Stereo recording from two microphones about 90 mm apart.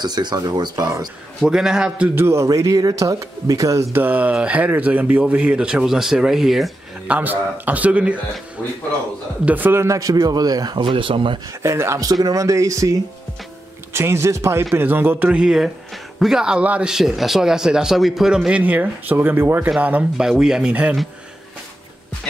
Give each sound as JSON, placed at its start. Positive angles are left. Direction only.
{"t": 0.0, "sound": "a man's voice", "side_deg": -50}
{"t": 1.4, "sound": "speech", "side_deg": -5}
{"t": 2.1, "sound": "a man's voice", "side_deg": -25}
{"t": 2.4, "sound": "speech", "side_deg": -35}
{"t": 4.0, "sound": "speech", "side_deg": -15}
{"t": 7.1, "sound": "speech", "side_deg": -20}
{"t": 9.4, "sound": "a man's voice", "side_deg": -20}
{"t": 11.6, "sound": "speech", "side_deg": -30}
{"t": 12.1, "sound": "speech", "side_deg": -45}
{"t": 13.9, "sound": "a man's voice", "side_deg": -30}